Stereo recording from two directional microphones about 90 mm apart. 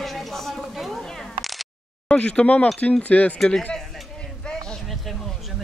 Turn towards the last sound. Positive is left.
turn(degrees=0)  # may be behind; listen again after turning